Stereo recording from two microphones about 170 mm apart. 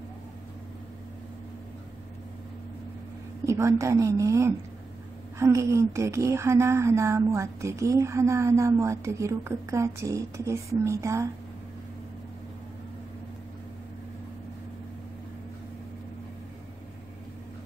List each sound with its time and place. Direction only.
3.4 s speech: 15° right (ahead or behind)